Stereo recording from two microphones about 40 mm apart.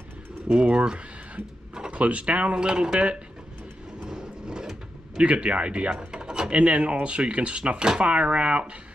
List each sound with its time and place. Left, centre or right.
0.5 s speech: right
4.0 s vehicle: centre
5.1 s speech: right
6.5 s speech: right